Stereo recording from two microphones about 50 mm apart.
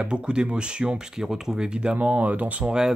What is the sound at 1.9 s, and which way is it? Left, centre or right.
Speech, right.